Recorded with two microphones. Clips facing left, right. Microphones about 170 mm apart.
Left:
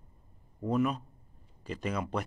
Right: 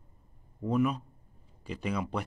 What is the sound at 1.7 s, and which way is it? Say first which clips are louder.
Speech: right 1 dB; 15° right (ahead or behind).